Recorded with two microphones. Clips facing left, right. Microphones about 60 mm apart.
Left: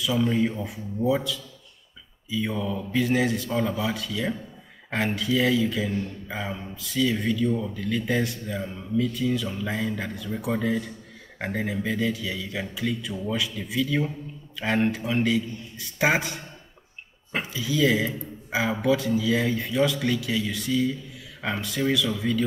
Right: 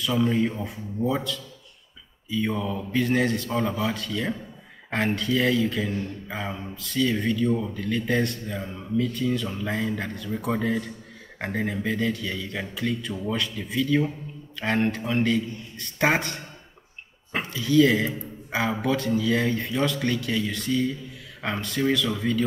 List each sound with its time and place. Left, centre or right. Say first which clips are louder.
0.3 s speech: even; centre
3.5 s speech: left 1 dB; right
3.8 s speech: even; centre
7.3 s speech: right 1 dB; centre
7.8 s a man's voice: even; centre
17.4 s speech: right 5 dB; centre